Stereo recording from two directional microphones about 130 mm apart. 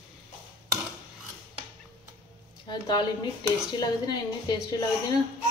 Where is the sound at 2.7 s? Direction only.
35° left (ahead or behind).